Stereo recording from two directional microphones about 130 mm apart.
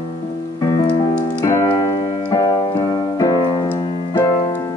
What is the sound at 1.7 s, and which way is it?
Keyboard, 30° left (ahead or behind).